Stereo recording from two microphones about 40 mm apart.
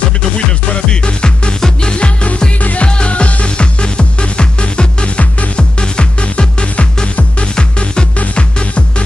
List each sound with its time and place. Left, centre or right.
1.0 s music: left
2.6 s music: left
8.2 s music: left